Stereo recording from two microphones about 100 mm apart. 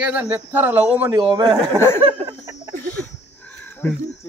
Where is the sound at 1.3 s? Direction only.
50° right (ahead or behind).